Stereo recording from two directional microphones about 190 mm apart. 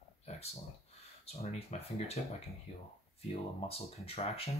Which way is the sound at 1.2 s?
35° left (ahead or behind).